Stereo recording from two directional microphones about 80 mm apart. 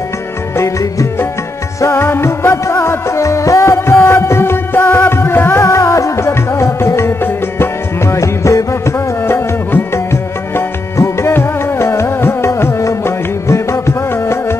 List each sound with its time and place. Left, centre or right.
1.8 s music: left
5.7 s music: left
9.3 s music: left